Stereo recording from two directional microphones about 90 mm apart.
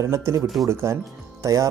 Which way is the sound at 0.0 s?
35° right (ahead or behind).